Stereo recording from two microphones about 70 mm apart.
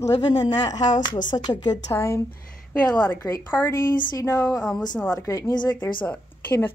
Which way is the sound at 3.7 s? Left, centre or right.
Left.